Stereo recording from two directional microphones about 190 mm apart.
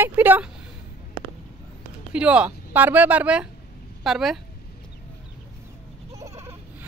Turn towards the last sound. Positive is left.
turn(degrees=-15)  # may be behind; listen again after turning